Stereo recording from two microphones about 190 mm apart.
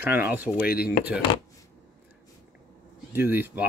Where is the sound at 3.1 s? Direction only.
10° right (ahead or behind).